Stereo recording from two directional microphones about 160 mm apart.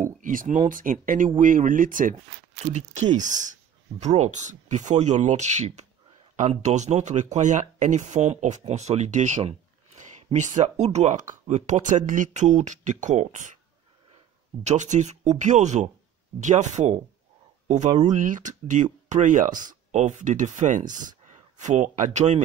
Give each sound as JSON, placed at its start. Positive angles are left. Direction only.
{"t": 0.0, "sound": "speech", "side_deg": -55}
{"t": 2.6, "sound": "speech", "side_deg": -45}